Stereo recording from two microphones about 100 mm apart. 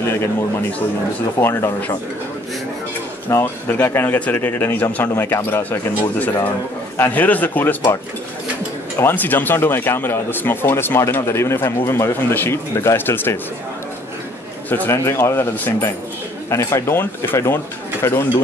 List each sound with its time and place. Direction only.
0.0 s a man's voice: 25° left (ahead or behind)
1.4 s speech: 25° left (ahead or behind)
3.3 s speech: 20° left (ahead or behind)
9.0 s speech: 20° left (ahead or behind)
14.7 s speech: 20° left (ahead or behind)
16.4 s speech: 30° left (ahead or behind)